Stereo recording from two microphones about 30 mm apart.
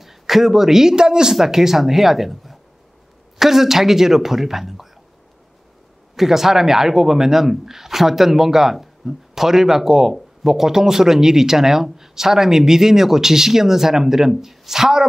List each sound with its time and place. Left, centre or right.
0.0 s speech: centre
0.9 s speech: right
1.3 s speech: centre
6.1 s speech: centre
14.3 s speech: centre